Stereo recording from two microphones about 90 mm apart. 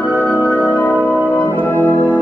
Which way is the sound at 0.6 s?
20° left (ahead or behind).